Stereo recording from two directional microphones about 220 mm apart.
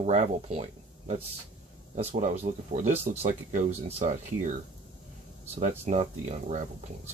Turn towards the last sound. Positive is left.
turn(degrees=-30)  # may be behind; listen again after turning